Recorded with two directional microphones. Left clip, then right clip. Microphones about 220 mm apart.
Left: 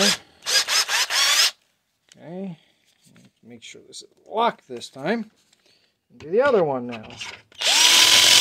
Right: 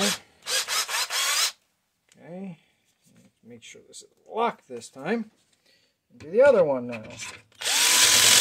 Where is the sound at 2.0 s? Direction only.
45° left (ahead or behind).